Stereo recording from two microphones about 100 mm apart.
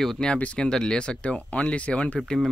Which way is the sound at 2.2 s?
Centre (ahead or behind).